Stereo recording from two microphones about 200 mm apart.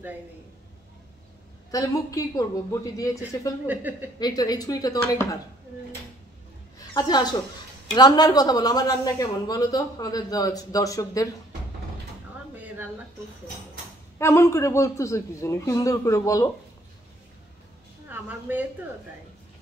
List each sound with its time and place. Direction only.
1.7 s a man's voice: 15° left (ahead or behind)
3.6 s a woman's voice: 10° right (ahead or behind)
4.2 s a woman's voice: 20° left (ahead or behind)
6.9 s a woman's voice: 20° left (ahead or behind)
14.1 s a man's voice: 15° left (ahead or behind)
18.1 s a woman's voice: 10° right (ahead or behind)